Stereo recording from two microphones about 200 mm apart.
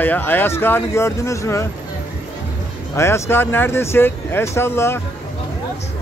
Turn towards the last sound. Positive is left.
turn(degrees=10)  # may be behind; listen again after turning